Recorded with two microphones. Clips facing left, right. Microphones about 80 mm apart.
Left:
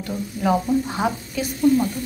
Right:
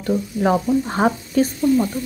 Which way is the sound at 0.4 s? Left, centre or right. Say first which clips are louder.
Right 1 dB; right.